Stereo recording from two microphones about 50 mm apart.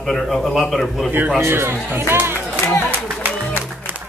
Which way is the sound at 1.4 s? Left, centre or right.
Right.